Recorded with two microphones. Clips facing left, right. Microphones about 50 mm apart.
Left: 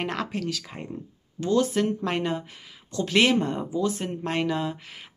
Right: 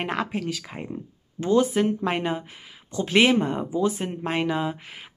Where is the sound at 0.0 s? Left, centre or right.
Centre.